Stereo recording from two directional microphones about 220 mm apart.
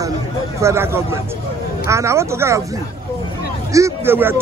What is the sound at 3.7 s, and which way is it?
Speech, 15° right (ahead or behind).